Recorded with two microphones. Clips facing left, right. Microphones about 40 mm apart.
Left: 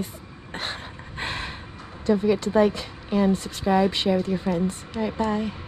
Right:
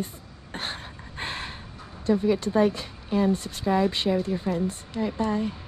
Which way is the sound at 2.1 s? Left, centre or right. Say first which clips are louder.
Left 2 dB; left.